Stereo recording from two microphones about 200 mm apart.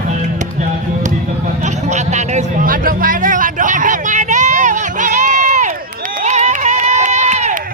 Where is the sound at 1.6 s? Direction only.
35° right (ahead or behind).